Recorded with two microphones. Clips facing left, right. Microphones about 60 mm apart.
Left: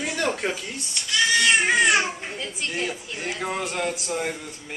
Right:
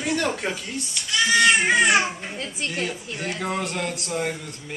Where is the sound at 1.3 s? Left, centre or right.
Right.